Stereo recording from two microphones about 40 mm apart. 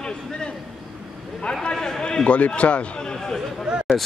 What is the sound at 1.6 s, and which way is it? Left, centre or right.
Speech, centre.